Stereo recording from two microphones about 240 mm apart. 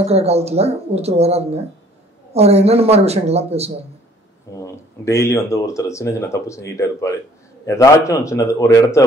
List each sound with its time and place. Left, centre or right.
0.0 s speech: right
4.6 s speech: centre